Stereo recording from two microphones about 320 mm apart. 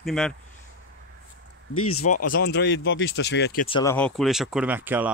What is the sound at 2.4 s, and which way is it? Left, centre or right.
Speech, left.